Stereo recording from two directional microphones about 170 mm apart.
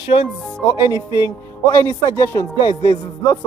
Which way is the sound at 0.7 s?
25° left (ahead or behind).